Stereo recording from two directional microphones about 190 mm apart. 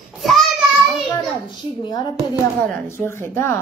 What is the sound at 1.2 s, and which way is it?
A woman's voice, 25° left (ahead or behind).